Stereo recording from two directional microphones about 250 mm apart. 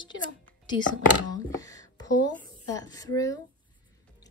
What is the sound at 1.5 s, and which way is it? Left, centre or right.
Speech, centre.